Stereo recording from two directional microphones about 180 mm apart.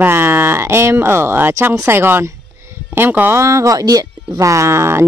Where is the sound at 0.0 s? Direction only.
10° right (ahead or behind).